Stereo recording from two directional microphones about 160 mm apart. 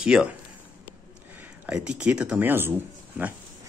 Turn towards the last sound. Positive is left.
turn(degrees=-10)  # may be behind; listen again after turning